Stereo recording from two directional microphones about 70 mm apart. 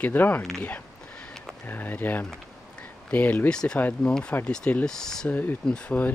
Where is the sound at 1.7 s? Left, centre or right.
Left.